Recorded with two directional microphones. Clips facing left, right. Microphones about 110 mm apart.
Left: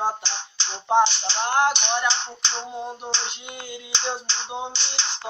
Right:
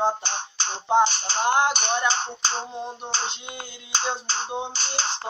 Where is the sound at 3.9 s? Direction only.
45° right (ahead or behind).